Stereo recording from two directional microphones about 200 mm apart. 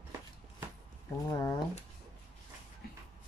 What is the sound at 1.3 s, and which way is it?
Speech, 15° left (ahead or behind).